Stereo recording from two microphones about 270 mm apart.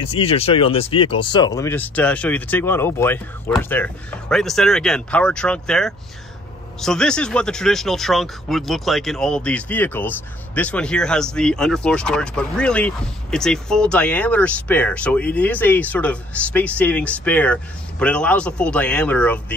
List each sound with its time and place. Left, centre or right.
0.0 s speech: left; by 19.4 s centre